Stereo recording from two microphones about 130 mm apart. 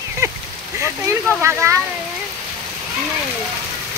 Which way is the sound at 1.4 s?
20° right (ahead or behind).